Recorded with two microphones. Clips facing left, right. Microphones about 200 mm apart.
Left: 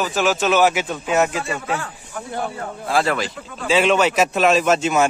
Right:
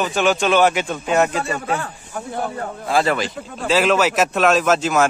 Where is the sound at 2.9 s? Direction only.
Centre (ahead or behind).